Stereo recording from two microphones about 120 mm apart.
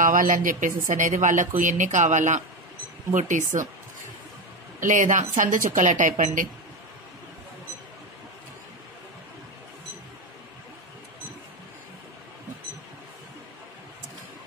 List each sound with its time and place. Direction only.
0.0 s speech: 90° right
4.7 s speech: 90° right